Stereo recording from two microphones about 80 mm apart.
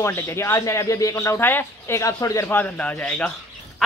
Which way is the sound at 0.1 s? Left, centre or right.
Left.